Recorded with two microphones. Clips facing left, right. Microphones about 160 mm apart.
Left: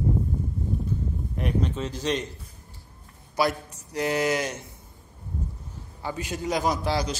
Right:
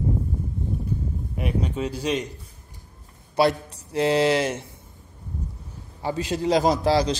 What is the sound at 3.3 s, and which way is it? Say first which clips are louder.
A man's voice: right 5 dB; 30° right (ahead or behind).